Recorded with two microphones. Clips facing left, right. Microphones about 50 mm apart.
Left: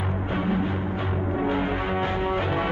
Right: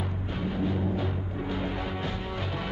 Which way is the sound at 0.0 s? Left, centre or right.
Left.